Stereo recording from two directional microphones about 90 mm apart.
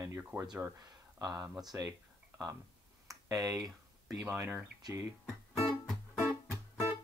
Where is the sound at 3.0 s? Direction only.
40° right (ahead or behind).